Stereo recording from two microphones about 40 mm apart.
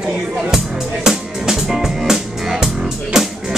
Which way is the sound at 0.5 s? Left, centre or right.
Centre.